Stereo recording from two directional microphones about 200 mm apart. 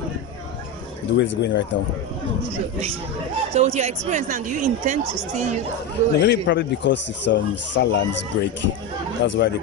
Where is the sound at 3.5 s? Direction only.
35° right (ahead or behind).